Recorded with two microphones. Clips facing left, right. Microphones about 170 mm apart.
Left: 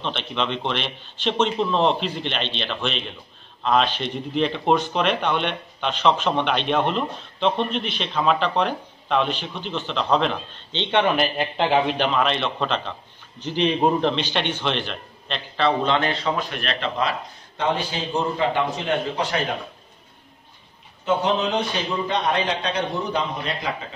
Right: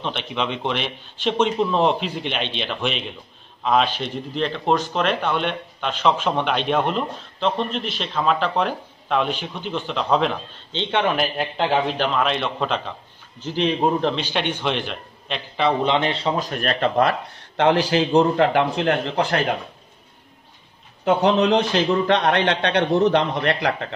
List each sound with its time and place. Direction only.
0.0 s a man's voice: 10° right (ahead or behind); by 19.4 s 60° right (ahead or behind)
21.0 s a man's voice: 65° right (ahead or behind)